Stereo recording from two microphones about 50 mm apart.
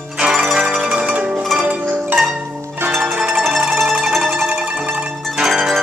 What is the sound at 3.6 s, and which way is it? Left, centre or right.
Music, centre.